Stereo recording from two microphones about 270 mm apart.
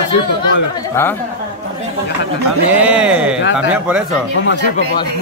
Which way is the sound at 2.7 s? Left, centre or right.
Centre.